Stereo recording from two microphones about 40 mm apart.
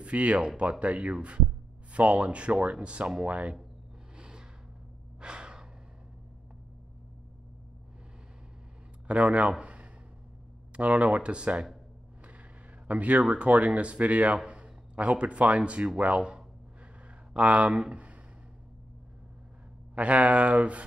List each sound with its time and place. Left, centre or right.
0.0 s speech: right
4.2 s a sound: right
5.2 s gasp: right
9.0 s speech: right
12.8 s a man's voice: right
20.0 s speech: right